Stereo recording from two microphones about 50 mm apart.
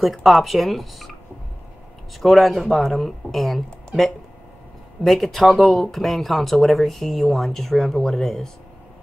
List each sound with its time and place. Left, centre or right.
0.0 s speech: centre
2.1 s speech: centre